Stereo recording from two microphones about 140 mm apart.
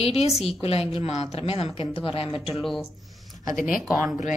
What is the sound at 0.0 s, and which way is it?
Speech, 50° left (ahead or behind).